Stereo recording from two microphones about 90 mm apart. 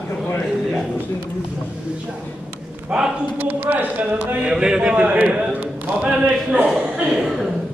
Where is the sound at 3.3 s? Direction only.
20° right (ahead or behind).